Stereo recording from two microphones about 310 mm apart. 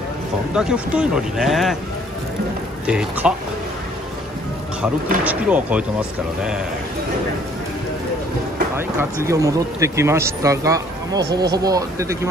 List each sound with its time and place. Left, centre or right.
0.6 s speech: centre
2.9 s speech: centre
5.2 s speech: centre
8.7 s speech: centre